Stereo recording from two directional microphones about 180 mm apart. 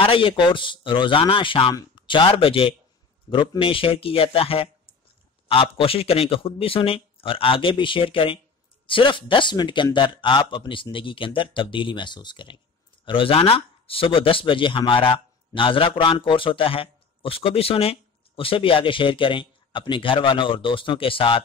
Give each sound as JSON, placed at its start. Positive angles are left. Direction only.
{"t": 0.0, "sound": "a man's voice", "side_deg": 30}